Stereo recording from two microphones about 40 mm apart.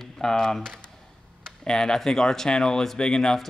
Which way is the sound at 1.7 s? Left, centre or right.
Centre.